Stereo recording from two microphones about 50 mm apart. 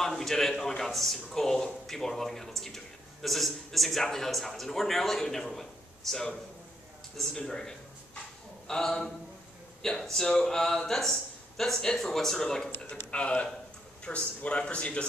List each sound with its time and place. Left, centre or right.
0.0 s a man's voice: centre
13.1 s a man's voice: left